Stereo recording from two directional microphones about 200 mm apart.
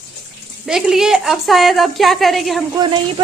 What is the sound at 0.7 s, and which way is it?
A woman's voice, centre (ahead or behind).